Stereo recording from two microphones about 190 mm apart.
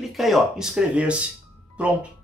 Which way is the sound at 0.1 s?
Centre (ahead or behind).